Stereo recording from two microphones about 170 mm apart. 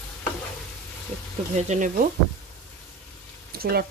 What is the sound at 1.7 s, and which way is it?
Speech, 50° right (ahead or behind).